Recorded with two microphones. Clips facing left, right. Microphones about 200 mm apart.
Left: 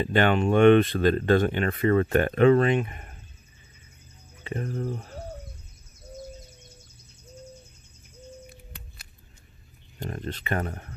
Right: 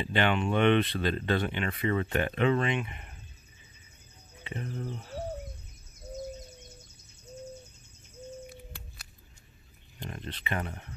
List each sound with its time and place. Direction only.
0.0 s speech: 45° left (ahead or behind)
4.5 s speech: 50° left (ahead or behind)
9.9 s speech: 45° left (ahead or behind)